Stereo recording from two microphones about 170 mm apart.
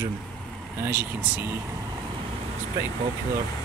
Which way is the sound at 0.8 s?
10° right (ahead or behind).